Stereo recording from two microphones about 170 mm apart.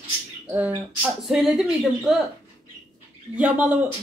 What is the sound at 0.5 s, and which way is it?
Speech, 10° right (ahead or behind).